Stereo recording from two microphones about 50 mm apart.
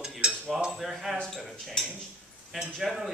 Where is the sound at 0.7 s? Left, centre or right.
Centre.